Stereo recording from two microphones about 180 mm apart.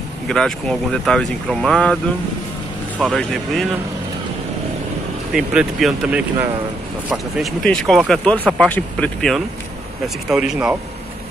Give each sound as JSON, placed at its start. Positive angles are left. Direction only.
{"t": 0.3, "sound": "speech", "side_deg": 5}
{"t": 3.0, "sound": "speech", "side_deg": 0}
{"t": 5.3, "sound": "speech", "side_deg": -5}
{"t": 7.6, "sound": "speech", "side_deg": 5}